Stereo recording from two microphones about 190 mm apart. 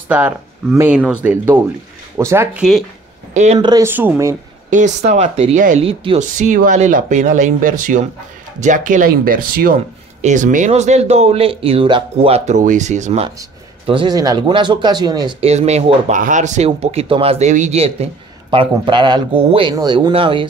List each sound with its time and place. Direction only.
0.1 s speech: 10° right (ahead or behind)
4.6 s speech: 40° right (ahead or behind)
13.8 s speech: 25° right (ahead or behind)
15.4 s speech: 35° right (ahead or behind)